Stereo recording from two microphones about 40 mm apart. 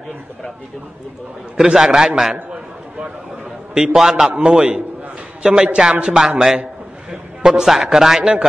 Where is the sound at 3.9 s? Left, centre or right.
Centre.